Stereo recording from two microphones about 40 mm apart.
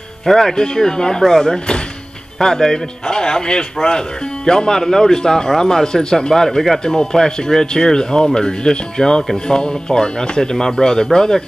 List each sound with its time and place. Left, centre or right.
0.3 s speech: centre